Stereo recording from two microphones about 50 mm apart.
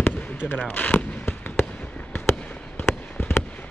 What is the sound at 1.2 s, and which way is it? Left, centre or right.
Fireworks, left.